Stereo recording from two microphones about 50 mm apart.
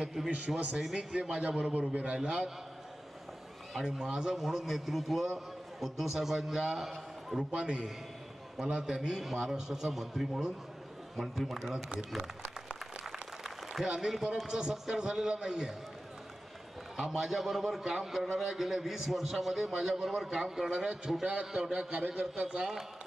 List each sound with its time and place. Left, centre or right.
0.0 s a man's voice: centre; by 2.1 s right
2.1 s a man's voice: centre
3.7 s a man's voice: centre
7.5 s a man's voice: centre
13.0 s a sound: centre
13.9 s a man's voice: centre
16.9 s a man's voice: centre